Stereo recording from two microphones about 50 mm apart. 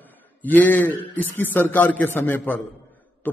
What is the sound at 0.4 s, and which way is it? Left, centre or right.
A man's voice, left.